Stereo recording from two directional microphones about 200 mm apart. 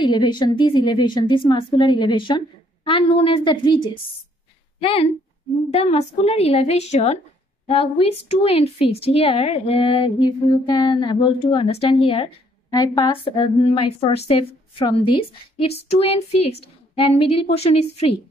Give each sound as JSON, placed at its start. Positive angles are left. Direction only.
{"t": 0.0, "sound": "a woman's voice", "side_deg": 20}